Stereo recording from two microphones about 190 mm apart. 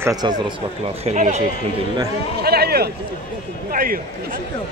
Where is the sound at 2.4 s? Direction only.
55° right (ahead or behind).